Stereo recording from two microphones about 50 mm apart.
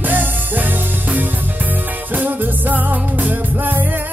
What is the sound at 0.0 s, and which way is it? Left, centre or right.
Music, right.